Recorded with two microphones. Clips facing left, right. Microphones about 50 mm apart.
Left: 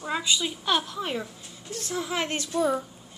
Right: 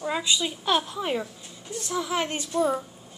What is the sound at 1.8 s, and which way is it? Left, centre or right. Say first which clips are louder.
Speech: right 2 dB; centre.